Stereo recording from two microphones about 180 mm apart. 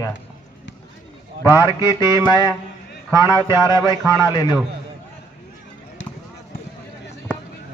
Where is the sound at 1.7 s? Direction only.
20° left (ahead or behind).